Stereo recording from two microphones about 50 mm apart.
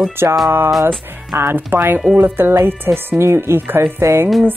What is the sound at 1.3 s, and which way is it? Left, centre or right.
A woman's voice, right.